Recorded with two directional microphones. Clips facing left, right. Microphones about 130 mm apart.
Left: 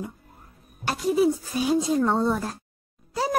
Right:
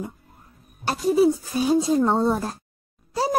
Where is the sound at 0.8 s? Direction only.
35° right (ahead or behind).